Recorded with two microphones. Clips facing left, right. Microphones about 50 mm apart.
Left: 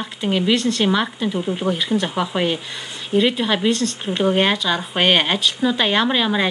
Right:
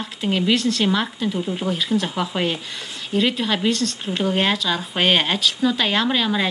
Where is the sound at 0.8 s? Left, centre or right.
Centre.